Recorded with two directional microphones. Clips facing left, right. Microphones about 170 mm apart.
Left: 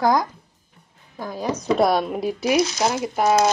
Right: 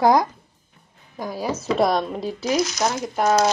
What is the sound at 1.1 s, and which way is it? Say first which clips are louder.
Speech: even; 10° right (ahead or behind).